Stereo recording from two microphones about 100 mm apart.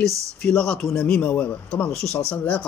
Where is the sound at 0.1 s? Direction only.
30° right (ahead or behind).